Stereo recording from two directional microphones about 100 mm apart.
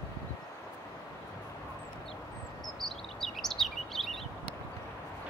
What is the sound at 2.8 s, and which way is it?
Chirp, 5° left (ahead or behind).